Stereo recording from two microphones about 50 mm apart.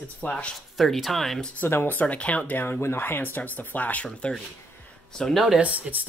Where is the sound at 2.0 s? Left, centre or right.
Left.